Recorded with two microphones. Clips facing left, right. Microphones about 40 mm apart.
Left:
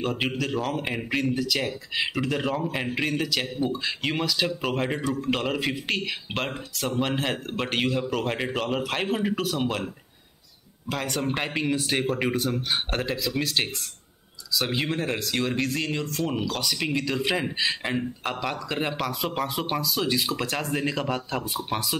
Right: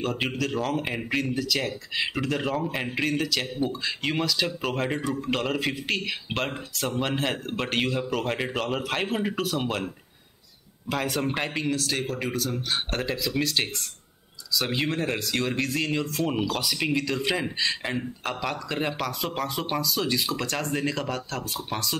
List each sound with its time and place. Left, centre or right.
0.0 s a man's voice: centre
10.9 s speech: centre
11.7 s speech: left
12.5 s speech: centre